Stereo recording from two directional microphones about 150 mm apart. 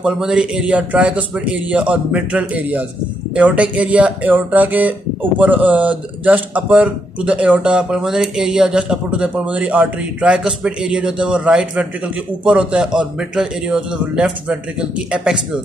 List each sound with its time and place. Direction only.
0.0 s speech: 5° right (ahead or behind)